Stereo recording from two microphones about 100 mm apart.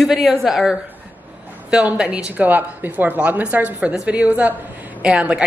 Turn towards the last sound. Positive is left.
turn(degrees=-10)  # may be behind; listen again after turning